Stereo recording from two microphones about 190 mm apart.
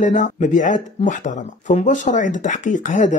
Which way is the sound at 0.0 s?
40° left (ahead or behind).